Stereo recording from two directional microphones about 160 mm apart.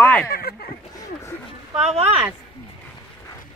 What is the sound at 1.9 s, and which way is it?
Speech, 40° right (ahead or behind).